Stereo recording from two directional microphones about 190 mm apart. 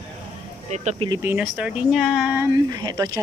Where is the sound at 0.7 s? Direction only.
35° right (ahead or behind).